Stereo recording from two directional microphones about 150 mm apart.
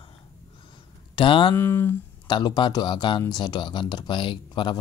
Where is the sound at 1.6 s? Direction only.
15° left (ahead or behind).